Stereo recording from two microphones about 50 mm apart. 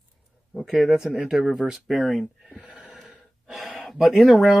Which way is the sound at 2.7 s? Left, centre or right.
Centre.